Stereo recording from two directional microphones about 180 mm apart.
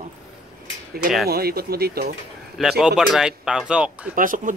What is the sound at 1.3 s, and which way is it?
Speech, 60° right (ahead or behind).